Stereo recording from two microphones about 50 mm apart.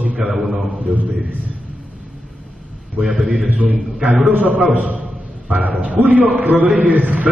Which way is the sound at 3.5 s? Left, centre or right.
Right.